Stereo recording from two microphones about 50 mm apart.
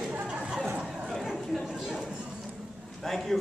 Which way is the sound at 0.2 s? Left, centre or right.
Centre.